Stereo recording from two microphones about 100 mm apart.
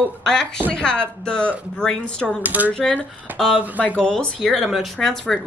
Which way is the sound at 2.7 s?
10° left (ahead or behind).